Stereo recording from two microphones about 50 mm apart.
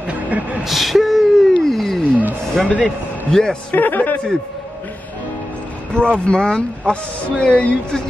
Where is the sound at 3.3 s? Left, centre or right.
Centre.